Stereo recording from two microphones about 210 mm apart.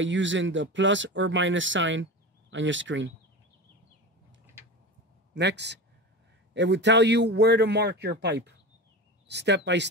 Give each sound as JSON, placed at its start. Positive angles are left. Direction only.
{"t": 0.0, "sound": "a man's voice", "side_deg": -60}
{"t": 5.3, "sound": "a man's voice", "side_deg": -55}